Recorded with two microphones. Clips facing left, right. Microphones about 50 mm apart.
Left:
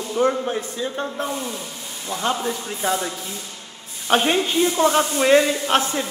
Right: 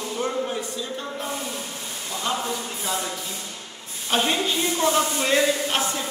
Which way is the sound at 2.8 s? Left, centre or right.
Left.